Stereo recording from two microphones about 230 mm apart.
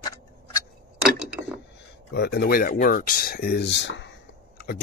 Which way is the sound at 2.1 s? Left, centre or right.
Left.